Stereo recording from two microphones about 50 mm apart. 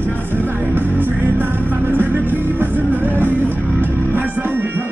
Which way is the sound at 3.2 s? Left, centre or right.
Right.